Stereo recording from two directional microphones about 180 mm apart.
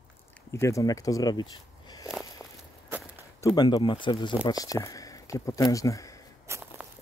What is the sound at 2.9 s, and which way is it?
Walk, 10° right (ahead or behind).